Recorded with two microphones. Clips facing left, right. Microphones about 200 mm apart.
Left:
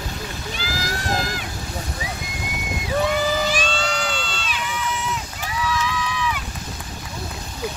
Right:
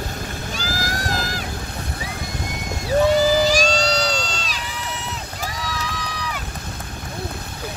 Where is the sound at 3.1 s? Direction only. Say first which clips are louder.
Right 5 dB; 35° right (ahead or behind).